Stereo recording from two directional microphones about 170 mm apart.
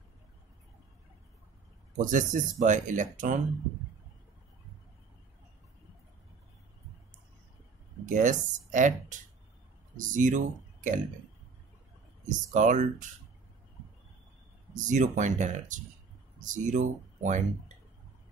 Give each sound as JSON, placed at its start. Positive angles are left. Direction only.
{"t": 2.0, "sound": "speech", "side_deg": -50}
{"t": 8.0, "sound": "speech", "side_deg": -45}
{"t": 9.9, "sound": "speech", "side_deg": -50}
{"t": 12.3, "sound": "speech", "side_deg": -45}
{"t": 14.7, "sound": "speech", "side_deg": -45}